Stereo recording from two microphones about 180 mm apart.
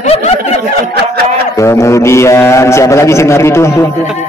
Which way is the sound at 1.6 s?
15° left (ahead or behind).